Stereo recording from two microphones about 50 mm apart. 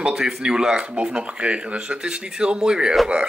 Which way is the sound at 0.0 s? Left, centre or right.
Centre.